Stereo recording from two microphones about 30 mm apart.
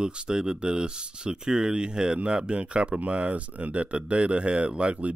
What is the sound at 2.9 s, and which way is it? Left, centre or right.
Speech, right.